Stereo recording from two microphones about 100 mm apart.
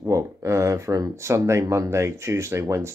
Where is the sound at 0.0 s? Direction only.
30° right (ahead or behind).